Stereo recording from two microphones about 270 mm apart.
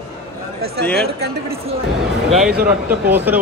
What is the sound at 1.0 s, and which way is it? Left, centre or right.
Speech, right.